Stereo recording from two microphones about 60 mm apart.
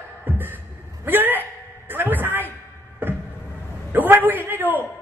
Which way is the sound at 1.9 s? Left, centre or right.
Right.